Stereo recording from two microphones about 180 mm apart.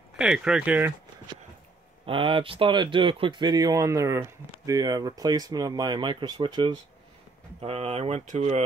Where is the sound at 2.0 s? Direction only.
30° right (ahead or behind).